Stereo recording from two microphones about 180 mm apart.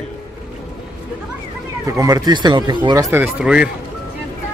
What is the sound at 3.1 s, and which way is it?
Speech, 5° right (ahead or behind).